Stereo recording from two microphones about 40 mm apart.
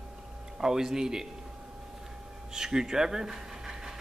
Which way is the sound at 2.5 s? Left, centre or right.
Centre.